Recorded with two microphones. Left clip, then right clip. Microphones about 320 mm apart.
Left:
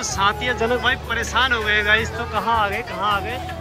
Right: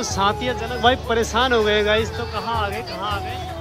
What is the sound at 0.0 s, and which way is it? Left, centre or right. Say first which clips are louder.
Speech: left 1 dB; centre.